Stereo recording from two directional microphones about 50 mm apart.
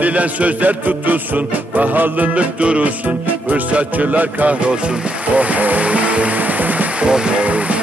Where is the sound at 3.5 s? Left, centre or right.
Right.